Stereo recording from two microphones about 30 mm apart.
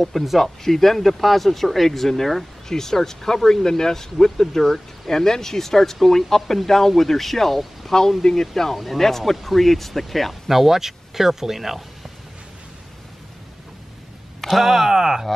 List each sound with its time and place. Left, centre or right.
0.0 s speech: centre
10.6 s speech: centre
14.5 s speech: centre
14.9 s speech: centre